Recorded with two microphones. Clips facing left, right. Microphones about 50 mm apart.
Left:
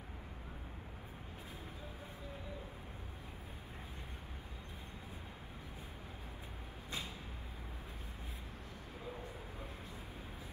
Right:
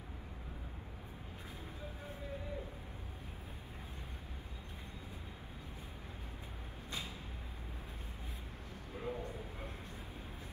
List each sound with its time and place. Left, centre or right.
9.0 s vehicle: right